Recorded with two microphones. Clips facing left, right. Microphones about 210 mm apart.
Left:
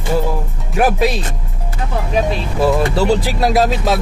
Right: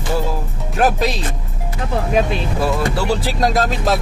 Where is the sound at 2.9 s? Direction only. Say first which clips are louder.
Left 4 dB; 20° left (ahead or behind).